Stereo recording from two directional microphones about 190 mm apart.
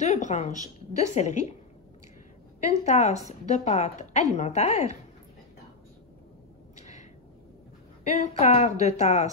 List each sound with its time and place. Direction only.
0.0 s a woman's voice: 35° left (ahead or behind)
2.8 s a woman's voice: 35° left (ahead or behind)
6.8 s a sound: 35° left (ahead or behind)
8.0 s a woman's voice: 35° left (ahead or behind)